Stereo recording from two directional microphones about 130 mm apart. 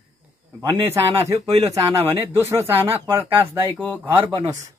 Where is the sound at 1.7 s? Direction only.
20° right (ahead or behind).